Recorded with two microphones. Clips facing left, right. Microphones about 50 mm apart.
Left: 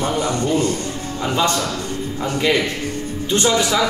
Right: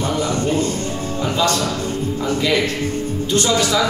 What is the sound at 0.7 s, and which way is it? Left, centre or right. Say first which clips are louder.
Music: right 2 dB; right.